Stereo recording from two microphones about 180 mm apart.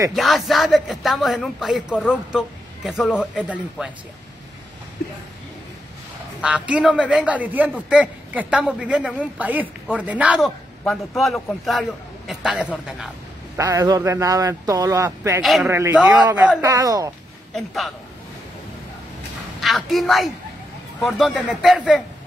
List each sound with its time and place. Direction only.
0.1 s speech: centre (ahead or behind)
6.4 s a man's voice: 5° right (ahead or behind)
13.6 s a man's voice: 15° right (ahead or behind)
15.4 s speech: centre (ahead or behind)
15.7 s a man's voice: 10° right (ahead or behind)
16.6 s speech: 20° right (ahead or behind)
17.6 s speech: centre (ahead or behind)
19.6 s a woman's voice: centre (ahead or behind)